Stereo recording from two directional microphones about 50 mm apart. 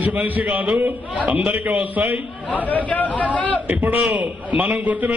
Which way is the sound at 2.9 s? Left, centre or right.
Left.